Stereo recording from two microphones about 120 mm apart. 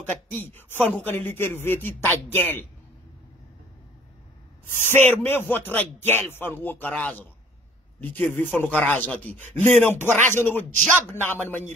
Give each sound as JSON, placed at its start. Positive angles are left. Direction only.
{"t": 0.3, "sound": "a man's voice", "side_deg": 15}
{"t": 5.0, "sound": "a man's voice", "side_deg": 15}